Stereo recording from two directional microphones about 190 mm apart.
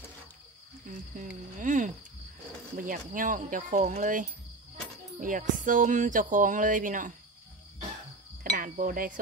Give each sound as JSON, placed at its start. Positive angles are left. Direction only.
{"t": 0.8, "sound": "speech", "side_deg": -45}
{"t": 2.9, "sound": "speech", "side_deg": -45}
{"t": 8.5, "sound": "speech", "side_deg": -45}